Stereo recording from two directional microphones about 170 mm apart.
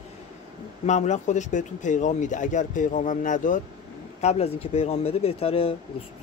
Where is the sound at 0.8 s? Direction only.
45° left (ahead or behind).